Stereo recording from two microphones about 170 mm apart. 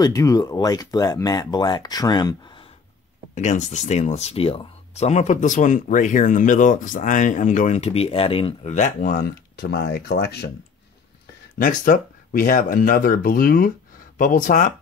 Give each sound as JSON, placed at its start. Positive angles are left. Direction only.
{"t": 0.0, "sound": "speech", "side_deg": 20}
{"t": 3.3, "sound": "speech", "side_deg": 45}
{"t": 11.5, "sound": "speech", "side_deg": 55}